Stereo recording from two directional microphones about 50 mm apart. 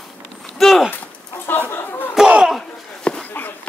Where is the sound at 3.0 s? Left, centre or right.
Left.